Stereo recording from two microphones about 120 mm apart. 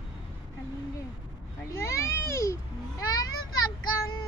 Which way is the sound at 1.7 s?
25° left (ahead or behind).